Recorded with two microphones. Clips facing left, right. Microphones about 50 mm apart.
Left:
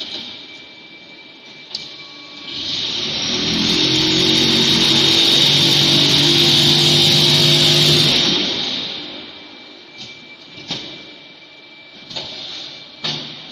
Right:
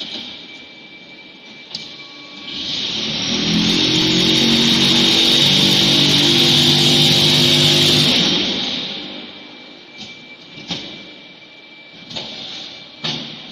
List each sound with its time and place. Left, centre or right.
0.0 s train: right
1.7 s printer: right
2.4 s vehicle: right
10.7 s a sound: right
12.1 s music: right